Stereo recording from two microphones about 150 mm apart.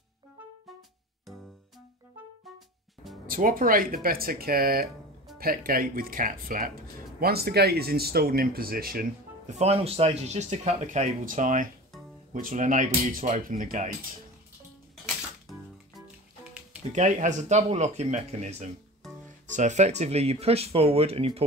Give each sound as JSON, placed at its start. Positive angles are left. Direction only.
{"t": 3.3, "sound": "speech", "side_deg": -70}
{"t": 9.5, "sound": "speech", "side_deg": -45}
{"t": 16.9, "sound": "speech", "side_deg": -55}